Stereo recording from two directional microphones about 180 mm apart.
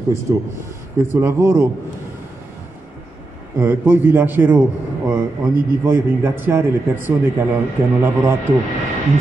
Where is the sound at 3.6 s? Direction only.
10° right (ahead or behind).